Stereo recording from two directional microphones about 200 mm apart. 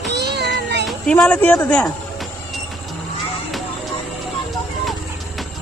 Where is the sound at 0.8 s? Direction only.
5° left (ahead or behind).